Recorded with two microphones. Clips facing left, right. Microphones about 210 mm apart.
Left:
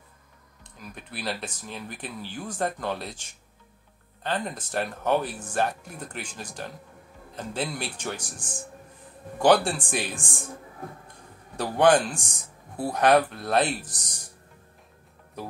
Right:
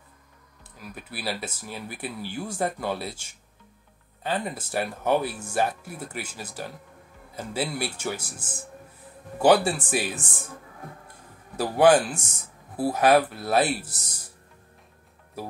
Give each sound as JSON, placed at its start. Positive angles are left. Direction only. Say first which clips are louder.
{"t": 0.7, "sound": "speech", "louder": "right 2 dB", "side_deg": -5}
{"t": 11.5, "sound": "speech", "louder": "right 2 dB", "side_deg": -5}